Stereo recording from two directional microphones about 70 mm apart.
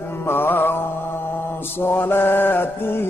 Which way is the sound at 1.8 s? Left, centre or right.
Left.